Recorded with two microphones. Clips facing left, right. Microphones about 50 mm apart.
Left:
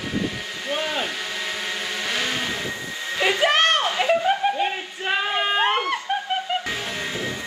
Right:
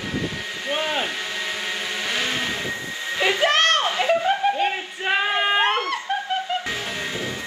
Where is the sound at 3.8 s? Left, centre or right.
Centre.